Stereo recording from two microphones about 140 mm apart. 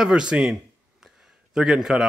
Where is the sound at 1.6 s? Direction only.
5° right (ahead or behind).